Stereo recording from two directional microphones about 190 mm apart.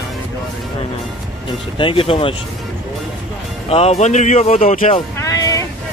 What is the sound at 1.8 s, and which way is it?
Speech, 25° left (ahead or behind).